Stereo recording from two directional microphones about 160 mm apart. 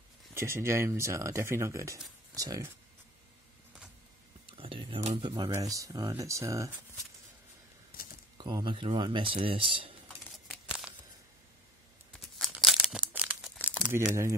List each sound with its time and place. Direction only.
0.3 s speech: 15° right (ahead or behind)
4.6 s a sound: 35° right (ahead or behind)
5.3 s speech: 25° right (ahead or behind)
7.9 s a sound: 60° left (ahead or behind)
8.4 s speech: 30° right (ahead or behind)
10.5 s tearing: 5° right (ahead or behind)
12.4 s crumpling: centre (ahead or behind)
13.8 s speech: 15° right (ahead or behind)